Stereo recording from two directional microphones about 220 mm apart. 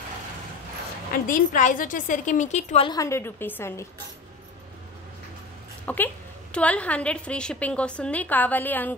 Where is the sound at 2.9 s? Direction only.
15° left (ahead or behind).